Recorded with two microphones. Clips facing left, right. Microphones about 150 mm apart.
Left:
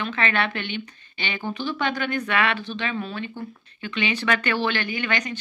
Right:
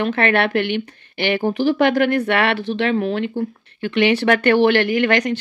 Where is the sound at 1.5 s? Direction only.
85° right.